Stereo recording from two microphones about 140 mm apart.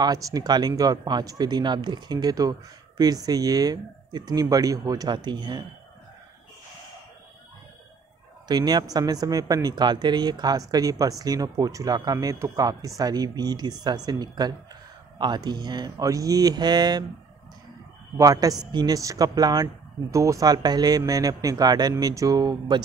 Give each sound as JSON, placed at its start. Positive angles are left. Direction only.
{"t": 0.0, "sound": "speech", "side_deg": -25}
{"t": 8.5, "sound": "speech", "side_deg": -30}
{"t": 18.1, "sound": "speech", "side_deg": -25}